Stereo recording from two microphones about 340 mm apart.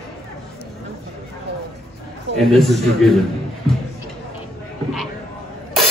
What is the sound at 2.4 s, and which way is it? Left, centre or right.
Speech, centre.